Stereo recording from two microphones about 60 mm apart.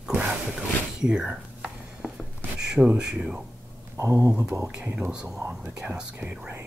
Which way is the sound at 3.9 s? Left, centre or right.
Right.